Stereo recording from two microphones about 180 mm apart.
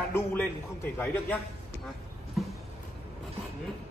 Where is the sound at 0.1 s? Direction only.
10° left (ahead or behind).